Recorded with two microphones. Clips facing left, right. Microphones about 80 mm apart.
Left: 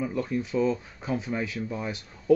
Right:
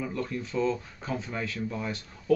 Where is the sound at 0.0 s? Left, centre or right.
Centre.